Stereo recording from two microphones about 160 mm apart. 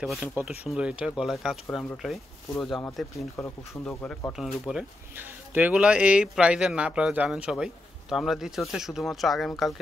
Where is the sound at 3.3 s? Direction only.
15° left (ahead or behind).